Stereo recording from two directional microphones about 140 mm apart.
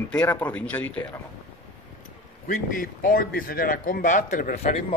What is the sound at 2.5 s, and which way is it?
Speech, 75° left (ahead or behind).